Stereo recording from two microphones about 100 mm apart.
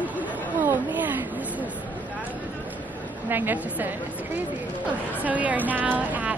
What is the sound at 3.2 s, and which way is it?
Speech, 20° right (ahead or behind).